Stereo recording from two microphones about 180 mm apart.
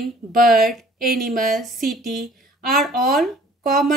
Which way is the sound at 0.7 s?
Centre (ahead or behind).